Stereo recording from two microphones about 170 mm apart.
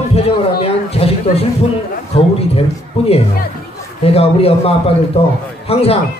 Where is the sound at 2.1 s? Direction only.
35° left (ahead or behind).